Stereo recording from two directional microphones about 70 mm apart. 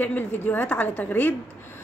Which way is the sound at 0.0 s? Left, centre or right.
Left.